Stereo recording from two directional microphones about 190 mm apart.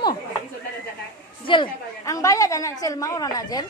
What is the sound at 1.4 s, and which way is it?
A woman's voice, 25° left (ahead or behind).